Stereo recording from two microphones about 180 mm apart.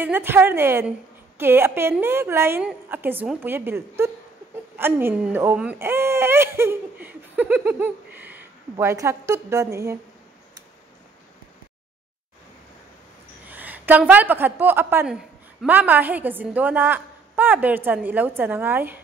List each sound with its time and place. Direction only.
0.0 s speech: 10° right (ahead or behind)
13.5 s a woman's voice: 10° right (ahead or behind)